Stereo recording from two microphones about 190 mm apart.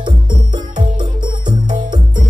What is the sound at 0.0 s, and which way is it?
Music, 25° right (ahead or behind).